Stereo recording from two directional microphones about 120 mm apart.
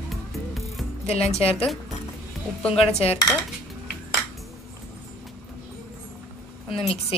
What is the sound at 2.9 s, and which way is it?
Speech, 60° left (ahead or behind).